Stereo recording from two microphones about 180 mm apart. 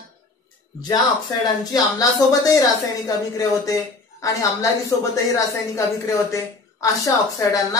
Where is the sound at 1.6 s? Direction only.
20° left (ahead or behind).